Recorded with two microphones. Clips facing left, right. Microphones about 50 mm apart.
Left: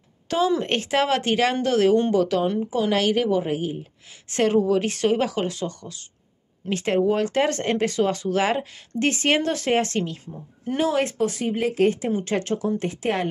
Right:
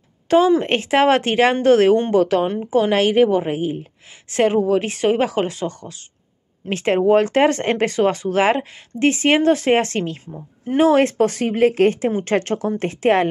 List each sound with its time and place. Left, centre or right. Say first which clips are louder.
0.3 s a woman's voice: right 7 dB; right
9.0 s a woman's voice: right 6 dB; centre; by 10.1 s right
10.2 s a woman's voice: right 2 dB; right
10.9 s speech: right 8 dB; right